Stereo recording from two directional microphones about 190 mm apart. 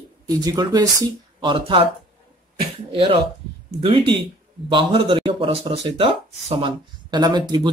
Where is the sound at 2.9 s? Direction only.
30° right (ahead or behind).